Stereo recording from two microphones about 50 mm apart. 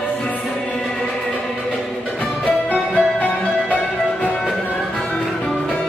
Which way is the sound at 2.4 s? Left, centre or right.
Left.